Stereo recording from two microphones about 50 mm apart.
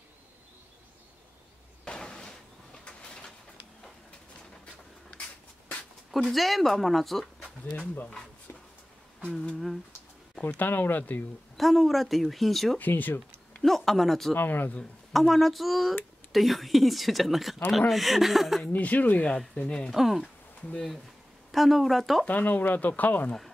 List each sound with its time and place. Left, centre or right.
1.9 s a sound: centre
6.1 s speech: centre
7.6 s speech: left
10.6 s speech: left
11.5 s speech: centre
12.7 s speech: left
13.6 s speech: centre
14.3 s speech: left
15.1 s speech: centre
18.7 s speech: left
19.9 s speech: centre
21.5 s speech: centre
22.2 s speech: left